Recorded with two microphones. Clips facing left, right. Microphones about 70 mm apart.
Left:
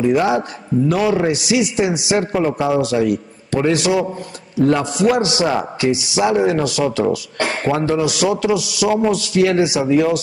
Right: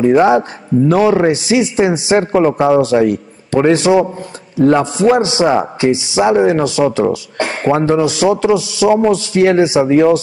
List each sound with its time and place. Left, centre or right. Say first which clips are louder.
0.0 s a man's voice: right 6 dB; right